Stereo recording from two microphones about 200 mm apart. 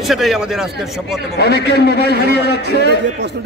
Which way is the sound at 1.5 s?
55° right (ahead or behind).